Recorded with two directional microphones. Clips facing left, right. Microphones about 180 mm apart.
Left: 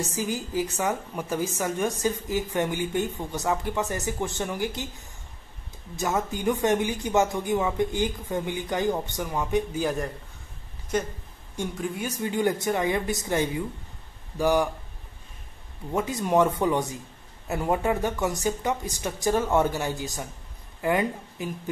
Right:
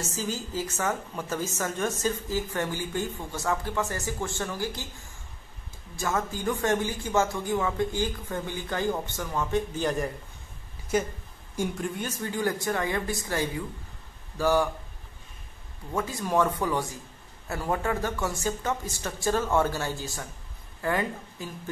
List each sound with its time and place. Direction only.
0.0 s a woman's voice: 15° left (ahead or behind)
9.8 s a man's voice: centre (ahead or behind)
12.0 s a woman's voice: 15° left (ahead or behind)
15.9 s a woman's voice: 20° left (ahead or behind)